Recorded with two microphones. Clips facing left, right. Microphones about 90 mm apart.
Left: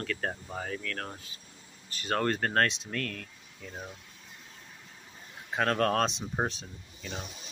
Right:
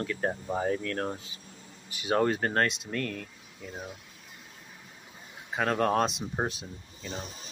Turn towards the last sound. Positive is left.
turn(degrees=0)  # may be behind; listen again after turning